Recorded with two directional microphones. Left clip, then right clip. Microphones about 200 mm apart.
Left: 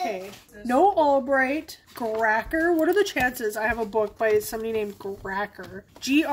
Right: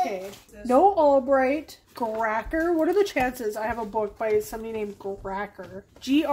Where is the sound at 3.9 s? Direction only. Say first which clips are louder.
Left 2 dB; 20° left (ahead or behind).